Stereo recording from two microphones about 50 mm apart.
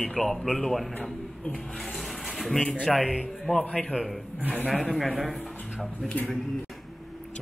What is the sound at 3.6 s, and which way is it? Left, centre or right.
Speech, centre.